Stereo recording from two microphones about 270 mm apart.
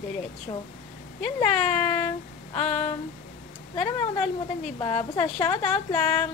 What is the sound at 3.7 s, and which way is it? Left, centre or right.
A woman's voice, left.